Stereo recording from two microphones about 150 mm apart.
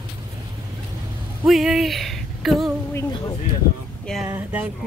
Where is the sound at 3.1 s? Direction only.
25° left (ahead or behind).